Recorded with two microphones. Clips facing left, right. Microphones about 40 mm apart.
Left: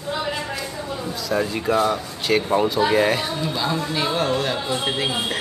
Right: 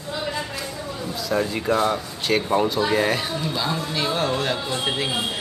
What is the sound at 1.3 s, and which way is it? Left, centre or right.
Speech, centre.